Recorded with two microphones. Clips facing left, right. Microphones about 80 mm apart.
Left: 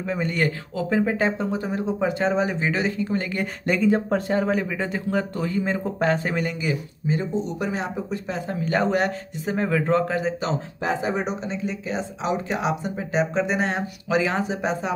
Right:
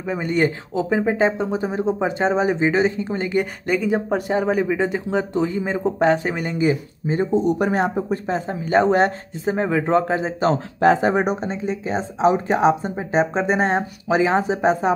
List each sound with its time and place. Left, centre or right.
0.1 s speech: centre
3.6 s speech: centre
6.6 s speech: right
7.4 s speech: right
8.3 s speech: right
10.5 s speech: right